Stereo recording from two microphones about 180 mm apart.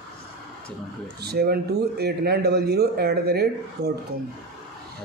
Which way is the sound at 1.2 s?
60° right (ahead or behind).